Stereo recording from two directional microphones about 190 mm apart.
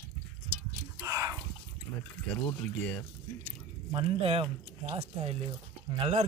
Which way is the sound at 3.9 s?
30° right (ahead or behind).